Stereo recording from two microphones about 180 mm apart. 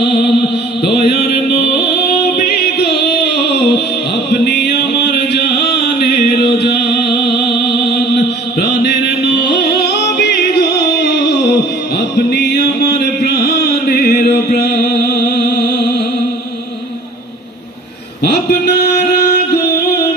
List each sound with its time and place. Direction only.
0.0 s music: 70° left (ahead or behind)
0.8 s chant: 65° left (ahead or behind)
2.3 s music: 65° left (ahead or behind)
4.6 s chant: 65° left (ahead or behind)
12.3 s music: 70° left (ahead or behind)
18.2 s a sound: 65° left (ahead or behind)